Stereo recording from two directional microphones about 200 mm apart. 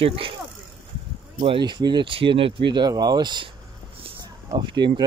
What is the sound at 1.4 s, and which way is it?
Speech, 25° right (ahead or behind).